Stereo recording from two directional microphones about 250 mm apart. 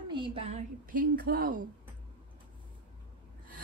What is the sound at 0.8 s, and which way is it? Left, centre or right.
Speech, right.